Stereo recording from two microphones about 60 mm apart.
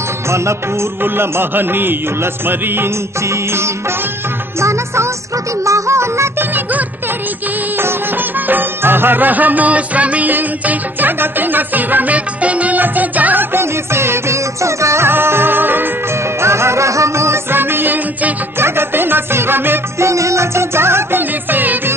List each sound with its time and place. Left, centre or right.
1.0 s music: right
3.3 s music: right
7.7 s music: right
16.3 s music: right
20.0 s music: right